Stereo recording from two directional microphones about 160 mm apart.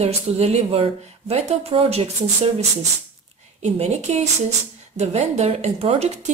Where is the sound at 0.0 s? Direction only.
40° right (ahead or behind).